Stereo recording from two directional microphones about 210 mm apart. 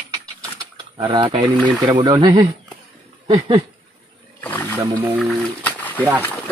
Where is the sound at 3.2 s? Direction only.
20° right (ahead or behind).